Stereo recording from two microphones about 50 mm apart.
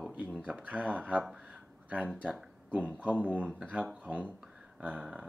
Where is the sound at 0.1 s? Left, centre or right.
Right.